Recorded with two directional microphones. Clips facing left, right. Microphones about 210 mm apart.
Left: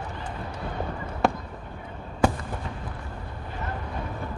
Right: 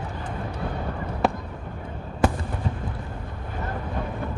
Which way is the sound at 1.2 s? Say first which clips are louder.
Even; centre (ahead or behind).